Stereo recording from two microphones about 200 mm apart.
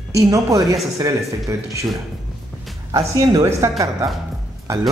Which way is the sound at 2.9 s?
15° right (ahead or behind).